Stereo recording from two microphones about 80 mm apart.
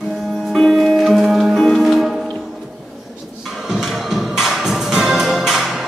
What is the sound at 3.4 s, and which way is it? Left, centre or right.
Music, centre.